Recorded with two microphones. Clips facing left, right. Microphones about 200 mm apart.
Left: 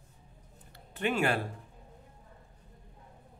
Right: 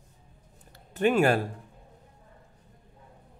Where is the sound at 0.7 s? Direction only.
45° right (ahead or behind).